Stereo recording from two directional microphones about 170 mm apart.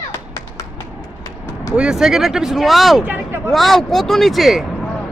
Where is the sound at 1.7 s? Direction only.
5° right (ahead or behind).